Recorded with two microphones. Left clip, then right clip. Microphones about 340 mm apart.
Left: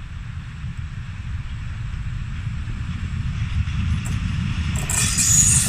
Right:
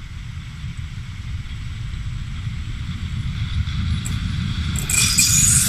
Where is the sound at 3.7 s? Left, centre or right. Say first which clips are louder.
Right 1 dB; centre.